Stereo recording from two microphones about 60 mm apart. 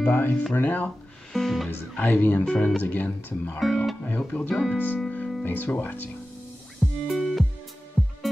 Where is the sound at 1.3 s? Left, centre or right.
Centre.